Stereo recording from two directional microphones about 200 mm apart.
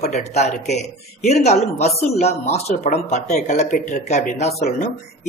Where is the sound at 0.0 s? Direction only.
35° left (ahead or behind).